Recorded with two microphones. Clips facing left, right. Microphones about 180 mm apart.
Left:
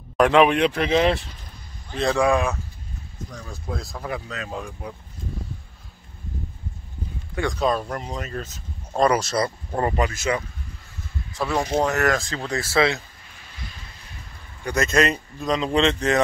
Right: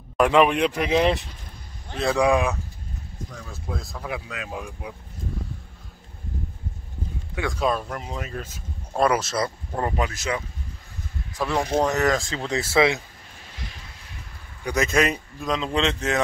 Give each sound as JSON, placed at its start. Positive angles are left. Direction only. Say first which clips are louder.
{"t": 0.2, "sound": "speech", "louder": "left 2 dB", "side_deg": -5}
{"t": 3.4, "sound": "speech", "louder": "left 2 dB", "side_deg": 0}
{"t": 7.3, "sound": "speech", "louder": "left 2 dB", "side_deg": -5}
{"t": 11.4, "sound": "speech", "louder": "left 1 dB", "side_deg": 15}
{"t": 11.8, "sound": "speech", "louder": "even", "side_deg": 0}
{"t": 12.4, "sound": "speech", "louder": "right 1 dB", "side_deg": -20}
{"t": 14.6, "sound": "speech", "louder": "left 1 dB", "side_deg": -10}